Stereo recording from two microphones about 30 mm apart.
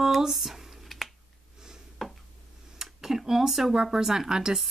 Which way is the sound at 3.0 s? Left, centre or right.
Centre.